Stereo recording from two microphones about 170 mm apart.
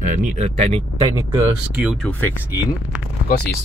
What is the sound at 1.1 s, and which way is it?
Speech, 15° right (ahead or behind).